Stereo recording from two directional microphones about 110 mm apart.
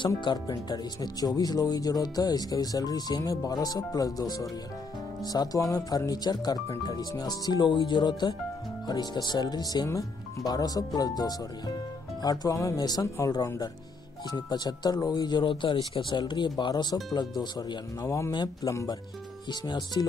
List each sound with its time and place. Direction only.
0.2 s speech: 40° left (ahead or behind)
18.3 s speech: 40° left (ahead or behind)
18.7 s speech: 30° left (ahead or behind)
19.6 s speech: 40° left (ahead or behind)